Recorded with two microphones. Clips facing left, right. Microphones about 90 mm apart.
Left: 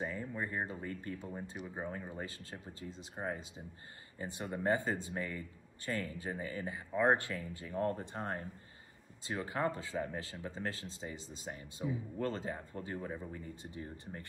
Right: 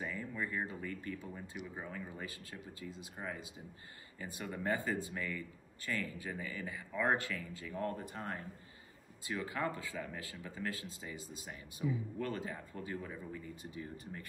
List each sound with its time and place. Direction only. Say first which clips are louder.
0.0 s speech: left 1 dB; 30° left (ahead or behind)